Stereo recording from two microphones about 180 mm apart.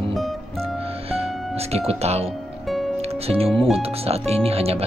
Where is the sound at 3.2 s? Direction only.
30° right (ahead or behind).